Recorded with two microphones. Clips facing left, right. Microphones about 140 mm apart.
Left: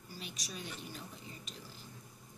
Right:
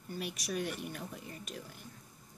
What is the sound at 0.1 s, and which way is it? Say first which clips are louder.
Speech: right 9 dB; 60° right (ahead or behind).